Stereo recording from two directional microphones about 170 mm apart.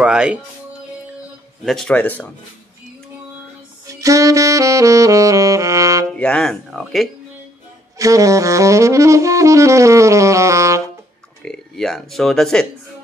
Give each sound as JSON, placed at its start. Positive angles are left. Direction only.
{"t": 0.0, "sound": "music", "side_deg": -5}
{"t": 1.6, "sound": "speech", "side_deg": 0}
{"t": 3.8, "sound": "saxophone", "side_deg": -20}
{"t": 6.1, "sound": "speech", "side_deg": 5}
{"t": 8.0, "sound": "saxophone", "side_deg": -20}
{"t": 11.4, "sound": "speech", "side_deg": 5}